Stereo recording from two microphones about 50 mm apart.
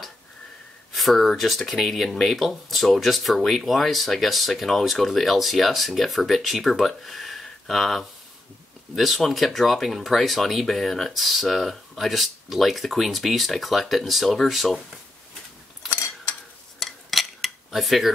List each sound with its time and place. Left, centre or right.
0.9 s speech: centre
16.8 s a sound: centre
17.6 s cutlery: centre